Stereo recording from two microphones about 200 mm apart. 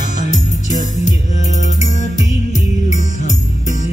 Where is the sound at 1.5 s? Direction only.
35° left (ahead or behind).